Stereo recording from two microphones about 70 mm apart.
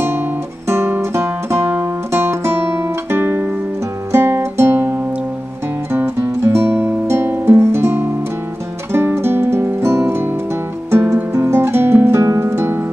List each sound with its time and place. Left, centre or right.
0.7 s music: right
2.1 s guitar: right
4.1 s music: right
11.3 s music: right